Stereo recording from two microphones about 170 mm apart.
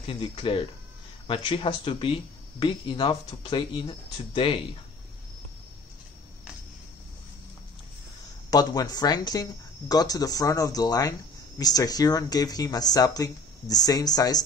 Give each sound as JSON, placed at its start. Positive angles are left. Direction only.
{"t": 0.0, "sound": "speech", "side_deg": 30}
{"t": 8.5, "sound": "speech", "side_deg": 20}